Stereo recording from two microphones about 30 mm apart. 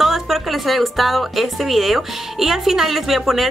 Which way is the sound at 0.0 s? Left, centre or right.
Centre.